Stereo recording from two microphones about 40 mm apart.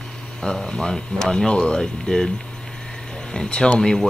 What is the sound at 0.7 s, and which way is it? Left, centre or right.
Speech, centre.